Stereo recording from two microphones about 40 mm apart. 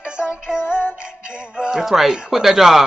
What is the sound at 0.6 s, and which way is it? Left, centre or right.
Music, left.